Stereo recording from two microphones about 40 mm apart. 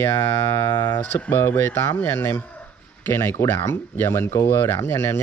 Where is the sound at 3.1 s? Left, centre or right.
Left.